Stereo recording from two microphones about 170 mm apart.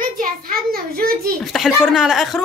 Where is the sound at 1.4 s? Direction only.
Centre (ahead or behind).